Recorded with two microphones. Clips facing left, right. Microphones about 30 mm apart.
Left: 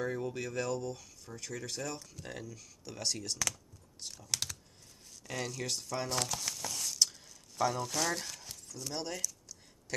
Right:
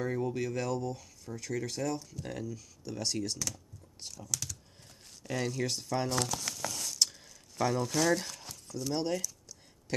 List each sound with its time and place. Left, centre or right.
0.0 s speech: centre
3.4 s speech: left
4.3 s computer keyboard: left
5.2 s speech: centre
6.0 s speech: centre
6.4 s a sound: centre
7.8 s speech: centre
8.8 s a sound: centre